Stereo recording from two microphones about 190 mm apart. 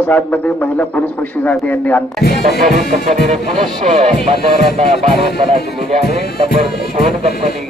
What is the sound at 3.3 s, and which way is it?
Music, 35° right (ahead or behind).